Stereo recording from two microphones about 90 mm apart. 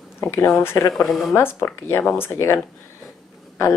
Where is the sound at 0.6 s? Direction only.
25° left (ahead or behind).